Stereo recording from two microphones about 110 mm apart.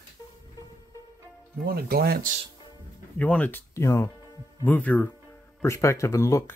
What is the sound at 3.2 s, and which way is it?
Speech, 15° left (ahead or behind).